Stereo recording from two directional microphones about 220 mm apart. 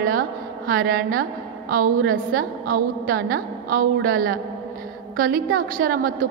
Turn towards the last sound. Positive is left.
turn(degrees=-40)  # may be behind; listen again after turning